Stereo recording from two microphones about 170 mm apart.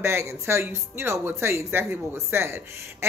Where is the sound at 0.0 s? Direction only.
15° right (ahead or behind).